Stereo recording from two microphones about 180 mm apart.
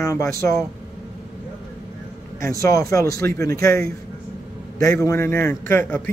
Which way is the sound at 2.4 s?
15° left (ahead or behind).